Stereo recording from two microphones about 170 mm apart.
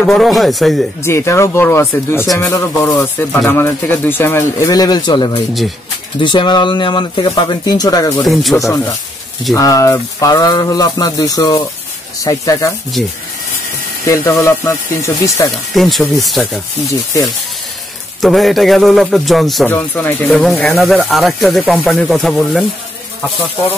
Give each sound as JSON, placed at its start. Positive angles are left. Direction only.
{"t": 0.0, "sound": "speech", "side_deg": 0}
{"t": 1.0, "sound": "speech", "side_deg": 15}
{"t": 8.3, "sound": "speech", "side_deg": 0}
{"t": 8.5, "sound": "speech", "side_deg": 20}
{"t": 13.0, "sound": "speech", "side_deg": 0}
{"t": 14.0, "sound": "speech", "side_deg": 15}
{"t": 15.7, "sound": "speech", "side_deg": 0}
{"t": 18.2, "sound": "speech", "side_deg": 0}
{"t": 19.7, "sound": "speech", "side_deg": 10}